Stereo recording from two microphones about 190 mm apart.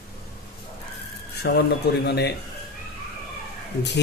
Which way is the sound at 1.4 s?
60° left (ahead or behind).